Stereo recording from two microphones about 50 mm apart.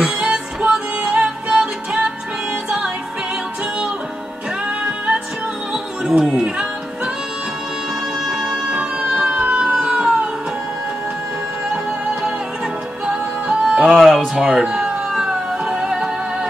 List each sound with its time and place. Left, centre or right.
0.2 s music: centre
6.0 s music: centre
8.3 s emergency vehicle: centre
11.7 s music: centre
13.9 s a sound: centre
14.3 s music: centre